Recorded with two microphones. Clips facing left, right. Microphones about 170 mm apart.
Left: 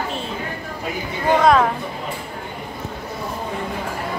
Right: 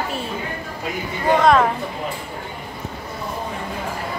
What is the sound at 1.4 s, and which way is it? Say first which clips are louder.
Speech: even; centre (ahead or behind).